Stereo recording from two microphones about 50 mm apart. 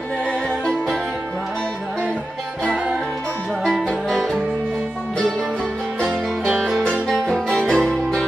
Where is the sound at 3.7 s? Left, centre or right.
Centre.